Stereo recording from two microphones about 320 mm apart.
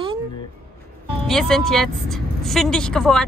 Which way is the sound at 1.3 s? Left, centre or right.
Centre.